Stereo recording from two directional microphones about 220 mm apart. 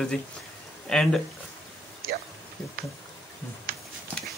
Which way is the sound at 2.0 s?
40° right (ahead or behind).